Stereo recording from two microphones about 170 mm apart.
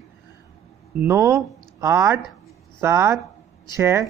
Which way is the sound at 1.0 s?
15° right (ahead or behind).